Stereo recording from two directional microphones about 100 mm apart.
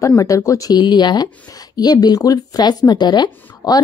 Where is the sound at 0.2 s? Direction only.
35° left (ahead or behind).